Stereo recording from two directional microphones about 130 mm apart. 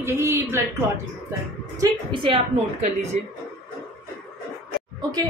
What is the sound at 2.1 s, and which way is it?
A woman's voice, 40° right (ahead or behind).